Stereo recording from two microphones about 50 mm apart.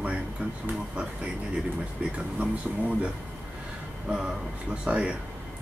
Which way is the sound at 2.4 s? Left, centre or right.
Right.